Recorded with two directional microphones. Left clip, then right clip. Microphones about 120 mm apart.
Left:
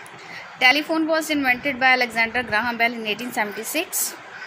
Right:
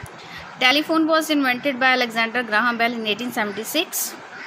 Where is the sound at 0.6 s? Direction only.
25° right (ahead or behind).